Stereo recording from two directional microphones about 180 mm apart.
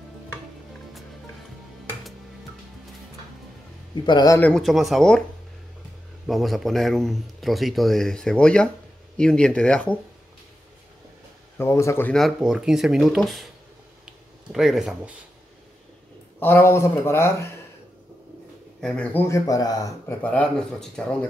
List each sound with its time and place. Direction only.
4.0 s speech: 25° left (ahead or behind)
4.4 s speech: 5° left (ahead or behind)
6.2 s speech: centre (ahead or behind)
11.5 s speech: 15° left (ahead or behind)
12.1 s speech: centre (ahead or behind)
14.0 s a sound: centre (ahead or behind)
16.3 s speech: 10° left (ahead or behind)
18.8 s speech: 5° left (ahead or behind)
20.2 s speech: 5° left (ahead or behind)